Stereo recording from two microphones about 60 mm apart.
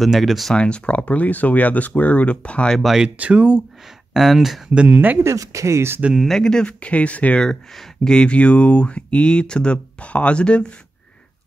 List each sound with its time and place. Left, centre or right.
0.0 s speech: centre
0.6 s speech: centre
2.8 s speech: centre
3.2 s speech: right
4.1 s speech: centre
4.8 s speech: right
5.2 s speech: right
6.1 s speech: centre; by 7.4 s left
7.4 s speech: centre